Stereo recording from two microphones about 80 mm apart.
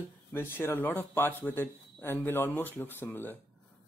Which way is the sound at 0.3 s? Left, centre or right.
Left.